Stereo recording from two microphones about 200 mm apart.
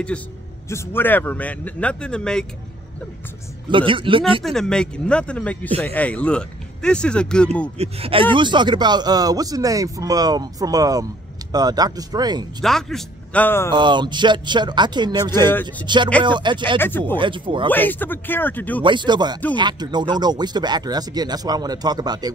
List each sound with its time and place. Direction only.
0.7 s a man's voice: 10° left (ahead or behind)
3.7 s a man's voice: 25° right (ahead or behind)
4.4 s speech: centre (ahead or behind)
7.7 s a man's voice: 30° right (ahead or behind)
12.6 s a man's voice: centre (ahead or behind)
13.7 s a man's voice: 20° right (ahead or behind)
16.7 s a man's voice: 10° left (ahead or behind)
17.2 s a man's voice: 25° right (ahead or behind)
17.6 s a man's voice: 10° left (ahead or behind)
18.8 s a man's voice: 25° right (ahead or behind)